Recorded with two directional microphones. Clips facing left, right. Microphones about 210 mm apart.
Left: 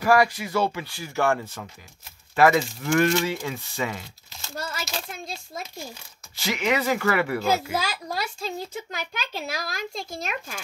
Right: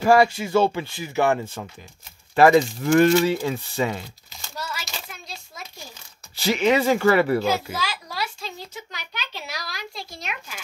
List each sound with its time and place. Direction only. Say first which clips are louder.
0.0 s speech: right 3 dB; 25° right (ahead or behind)
2.3 s speech: right 4 dB; 30° right (ahead or behind)
4.3 s crumpling: left 1 dB; centre (ahead or behind)
4.8 s speech: left 4 dB; centre (ahead or behind)
6.3 s speech: right 5 dB; 30° right (ahead or behind)
7.8 s a child's voice: even; 50° left (ahead or behind)